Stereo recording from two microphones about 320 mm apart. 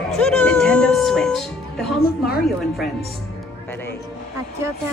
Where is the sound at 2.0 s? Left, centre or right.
Left.